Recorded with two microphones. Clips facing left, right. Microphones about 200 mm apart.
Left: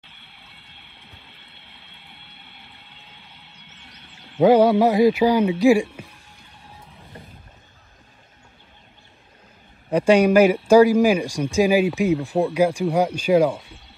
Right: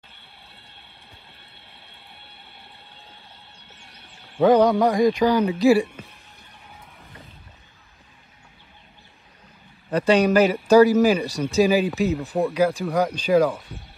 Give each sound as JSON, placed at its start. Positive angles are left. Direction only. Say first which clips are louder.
{"t": 3.0, "sound": "music", "louder": "right 1 dB", "side_deg": 15}
{"t": 4.4, "sound": "a man's voice", "louder": "left 2 dB", "side_deg": 10}
{"t": 9.8, "sound": "a man's voice", "louder": "left 2 dB", "side_deg": 10}